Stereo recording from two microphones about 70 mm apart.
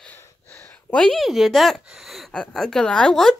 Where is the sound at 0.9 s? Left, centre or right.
Centre.